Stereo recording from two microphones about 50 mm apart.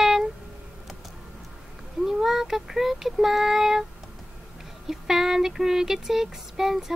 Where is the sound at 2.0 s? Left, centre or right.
Centre.